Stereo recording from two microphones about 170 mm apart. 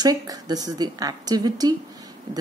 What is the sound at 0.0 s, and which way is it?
A woman's voice, 20° right (ahead or behind).